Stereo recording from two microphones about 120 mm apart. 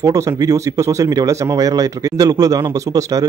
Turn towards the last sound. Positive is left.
turn(degrees=-30)  # may be behind; listen again after turning